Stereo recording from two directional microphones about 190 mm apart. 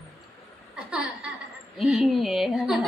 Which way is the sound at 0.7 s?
5° right (ahead or behind).